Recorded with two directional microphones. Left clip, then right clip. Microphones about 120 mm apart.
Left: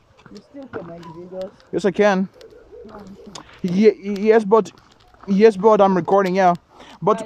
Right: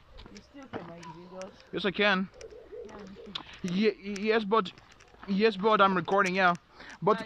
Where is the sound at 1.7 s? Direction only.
90° left.